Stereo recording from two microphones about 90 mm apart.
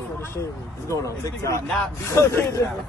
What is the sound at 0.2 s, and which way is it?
Speech, 35° left (ahead or behind).